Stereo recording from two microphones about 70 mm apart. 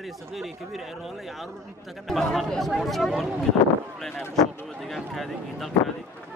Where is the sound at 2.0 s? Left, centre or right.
Centre.